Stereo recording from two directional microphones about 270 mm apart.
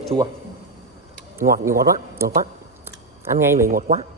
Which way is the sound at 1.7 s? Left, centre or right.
Right.